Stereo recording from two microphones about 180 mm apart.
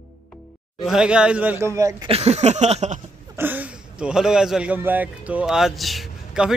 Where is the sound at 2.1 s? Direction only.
35° right (ahead or behind).